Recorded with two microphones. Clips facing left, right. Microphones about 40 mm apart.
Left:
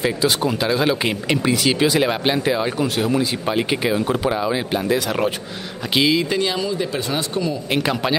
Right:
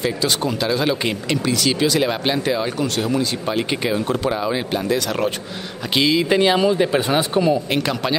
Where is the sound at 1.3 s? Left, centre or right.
Centre.